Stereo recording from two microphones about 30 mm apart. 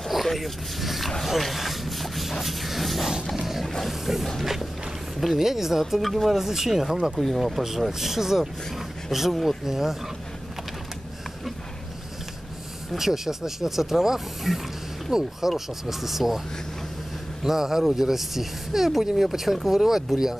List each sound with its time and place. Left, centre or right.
0.1 s speech: centre
3.6 s roaring cats: centre
4.0 s speech: centre
6.4 s speech: centre
12.9 s speech: centre
17.4 s speech: centre